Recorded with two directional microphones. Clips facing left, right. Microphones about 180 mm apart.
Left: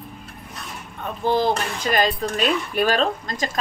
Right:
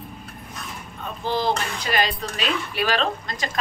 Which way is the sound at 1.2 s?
50° left (ahead or behind).